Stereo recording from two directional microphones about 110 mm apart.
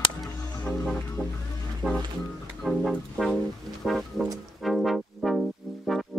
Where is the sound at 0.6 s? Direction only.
5° left (ahead or behind).